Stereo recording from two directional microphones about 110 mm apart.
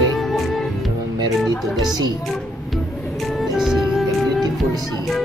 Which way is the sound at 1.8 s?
40° right (ahead or behind).